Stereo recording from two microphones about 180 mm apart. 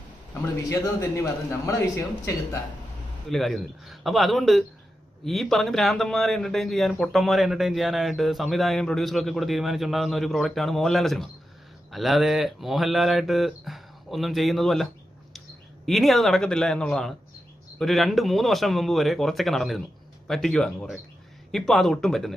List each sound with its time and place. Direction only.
0.3 s a man's voice: 15° left (ahead or behind)
3.3 s a man's voice: centre (ahead or behind)